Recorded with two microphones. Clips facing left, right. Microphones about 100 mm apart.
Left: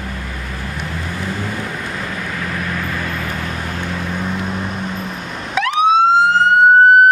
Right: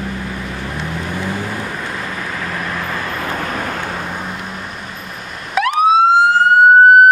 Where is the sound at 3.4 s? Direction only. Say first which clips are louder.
Right 3 dB; 55° right (ahead or behind).